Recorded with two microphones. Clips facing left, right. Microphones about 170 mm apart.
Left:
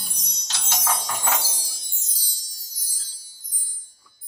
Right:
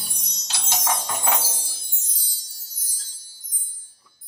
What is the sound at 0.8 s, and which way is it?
Music, 25° right (ahead or behind).